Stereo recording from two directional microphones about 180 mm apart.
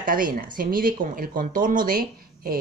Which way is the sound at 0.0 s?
50° right (ahead or behind).